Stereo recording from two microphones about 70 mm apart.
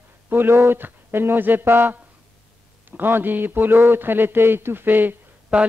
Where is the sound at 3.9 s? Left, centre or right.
Right.